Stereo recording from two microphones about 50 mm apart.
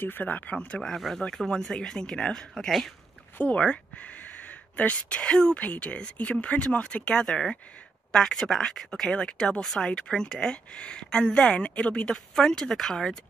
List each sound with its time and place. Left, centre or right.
0.0 s speech: left
0.8 s speech: centre